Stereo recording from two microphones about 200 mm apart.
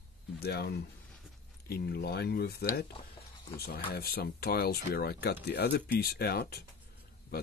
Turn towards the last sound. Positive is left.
turn(degrees=50)  # may be behind; listen again after turning